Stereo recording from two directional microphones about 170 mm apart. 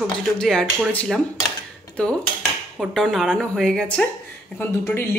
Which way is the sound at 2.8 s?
Centre (ahead or behind).